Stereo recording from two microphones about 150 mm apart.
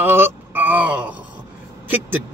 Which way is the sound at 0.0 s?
15° right (ahead or behind).